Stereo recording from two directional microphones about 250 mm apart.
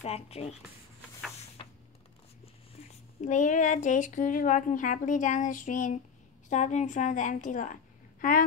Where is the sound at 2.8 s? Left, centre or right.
Left.